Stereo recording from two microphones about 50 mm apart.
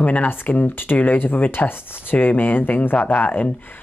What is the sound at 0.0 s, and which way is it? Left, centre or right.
Speech, left.